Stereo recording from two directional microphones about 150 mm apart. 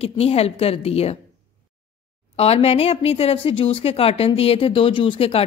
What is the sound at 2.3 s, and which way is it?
A woman's voice, 40° left (ahead or behind).